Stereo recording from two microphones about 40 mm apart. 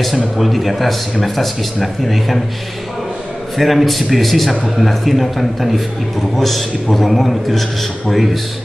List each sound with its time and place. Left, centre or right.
0.4 s a man's voice: centre
3.5 s a man's voice: centre